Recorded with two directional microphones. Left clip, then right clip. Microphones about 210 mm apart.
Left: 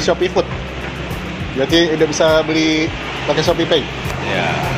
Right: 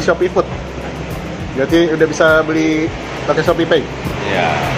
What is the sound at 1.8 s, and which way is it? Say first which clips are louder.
Speech: right 2 dB; 25° left (ahead or behind).